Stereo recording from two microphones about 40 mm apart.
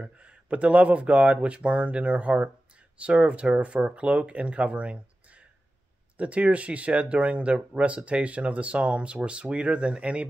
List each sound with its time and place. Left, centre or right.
0.0 s speech: right